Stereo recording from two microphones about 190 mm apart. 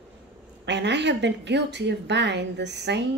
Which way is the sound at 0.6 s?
65° right (ahead or behind).